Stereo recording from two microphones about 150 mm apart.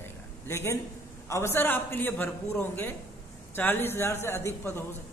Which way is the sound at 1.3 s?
15° left (ahead or behind).